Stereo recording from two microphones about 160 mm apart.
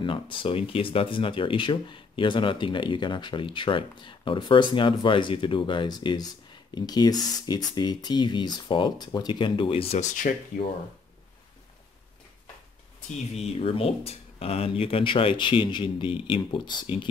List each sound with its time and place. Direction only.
0.0 s speech: 30° left (ahead or behind)
10.3 s speech: 60° left (ahead or behind)
13.4 s speech: 35° left (ahead or behind)